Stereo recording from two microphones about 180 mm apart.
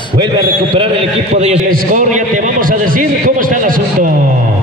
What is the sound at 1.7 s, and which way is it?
A man's voice, 50° right (ahead or behind).